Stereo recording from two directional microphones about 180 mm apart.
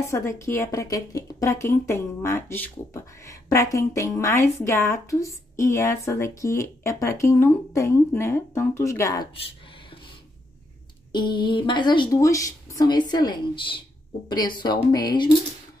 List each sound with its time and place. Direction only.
0.1 s a woman's voice: 15° left (ahead or behind)
11.1 s speech: 25° left (ahead or behind)